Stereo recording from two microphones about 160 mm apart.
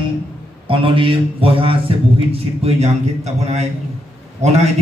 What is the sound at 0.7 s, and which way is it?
A man's voice, 35° right (ahead or behind).